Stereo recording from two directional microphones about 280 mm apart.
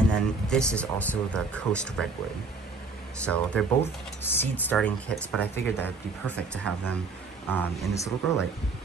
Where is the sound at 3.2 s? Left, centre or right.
Centre.